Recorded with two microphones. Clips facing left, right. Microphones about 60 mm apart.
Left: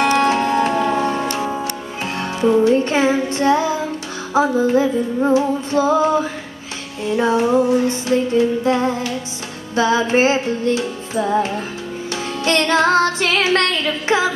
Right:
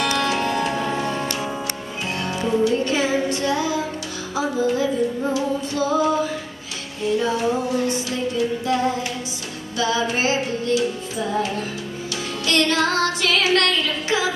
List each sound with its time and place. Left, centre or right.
0.0 s music: left
1.0 s music: left
7.2 s music: left